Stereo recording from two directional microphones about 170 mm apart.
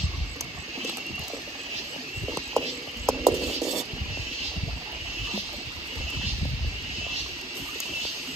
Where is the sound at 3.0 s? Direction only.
15° right (ahead or behind).